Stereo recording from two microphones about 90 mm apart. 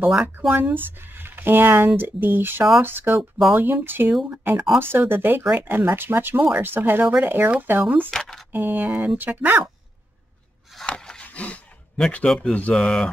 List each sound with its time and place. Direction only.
0.1 s speech: 5° right (ahead or behind)
0.5 s speech: 20° right (ahead or behind)
3.2 s speech: centre (ahead or behind)
3.6 s speech: 25° right (ahead or behind)
8.1 s a sound: 5° left (ahead or behind)
8.5 s a sound: 20° right (ahead or behind)
8.9 s speech: 10° right (ahead or behind)
9.2 s speech: 20° right (ahead or behind)
10.9 s a sound: 10° left (ahead or behind)
12.5 s mantra: 10° left (ahead or behind)